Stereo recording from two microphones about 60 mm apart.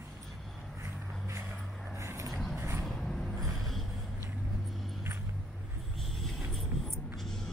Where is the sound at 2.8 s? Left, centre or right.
Centre.